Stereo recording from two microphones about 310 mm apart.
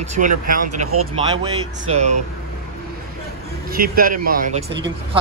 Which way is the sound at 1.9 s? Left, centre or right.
Centre.